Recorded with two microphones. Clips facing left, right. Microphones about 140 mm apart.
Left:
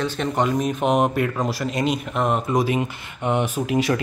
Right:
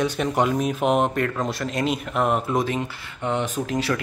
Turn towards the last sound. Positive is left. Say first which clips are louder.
# left 3 dB
turn(degrees=10)  # may be behind; listen again after turning